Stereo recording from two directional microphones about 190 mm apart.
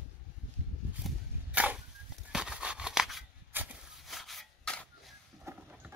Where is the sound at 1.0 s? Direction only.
5° right (ahead or behind).